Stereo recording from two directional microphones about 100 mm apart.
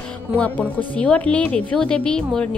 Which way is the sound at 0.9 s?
10° left (ahead or behind).